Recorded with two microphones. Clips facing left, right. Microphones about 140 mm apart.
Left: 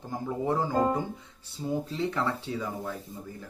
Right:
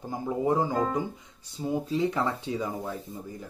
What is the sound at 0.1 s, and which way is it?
Speech, 15° right (ahead or behind).